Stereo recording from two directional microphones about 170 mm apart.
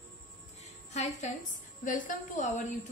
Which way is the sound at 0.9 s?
40° left (ahead or behind).